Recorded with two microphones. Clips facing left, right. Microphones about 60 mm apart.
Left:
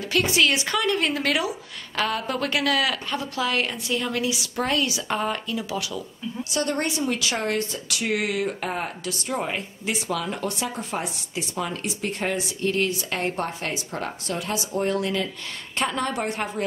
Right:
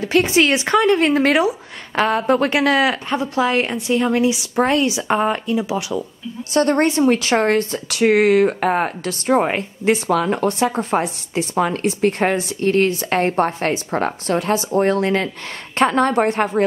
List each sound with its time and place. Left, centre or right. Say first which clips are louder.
0.0 s a woman's voice: right 6 dB; right
6.5 s speech: right 10 dB; right